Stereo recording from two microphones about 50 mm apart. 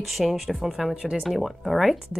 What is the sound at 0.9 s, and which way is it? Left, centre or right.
Speech, centre.